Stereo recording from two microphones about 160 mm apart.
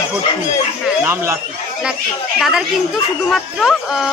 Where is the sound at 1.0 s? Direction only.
15° right (ahead or behind).